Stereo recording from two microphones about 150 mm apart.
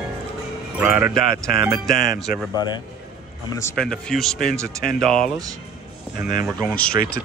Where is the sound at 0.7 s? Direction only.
10° right (ahead or behind).